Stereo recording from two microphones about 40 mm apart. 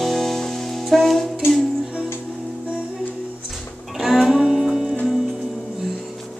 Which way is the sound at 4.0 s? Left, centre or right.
Centre.